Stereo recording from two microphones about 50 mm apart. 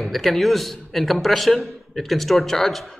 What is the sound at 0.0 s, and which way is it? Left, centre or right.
A man's voice, centre.